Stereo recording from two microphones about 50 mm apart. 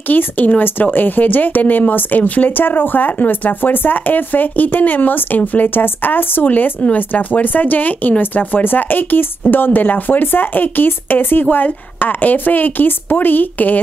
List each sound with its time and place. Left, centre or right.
0.1 s speech: left
6.4 s speech: left